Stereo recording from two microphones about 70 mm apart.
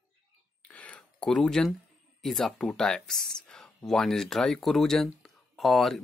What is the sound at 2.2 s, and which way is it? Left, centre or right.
Speech, centre.